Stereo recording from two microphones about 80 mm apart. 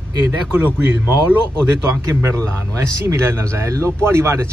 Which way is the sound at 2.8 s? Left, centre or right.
Right.